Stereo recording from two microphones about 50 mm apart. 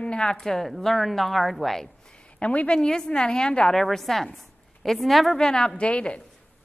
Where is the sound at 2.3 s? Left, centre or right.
Left.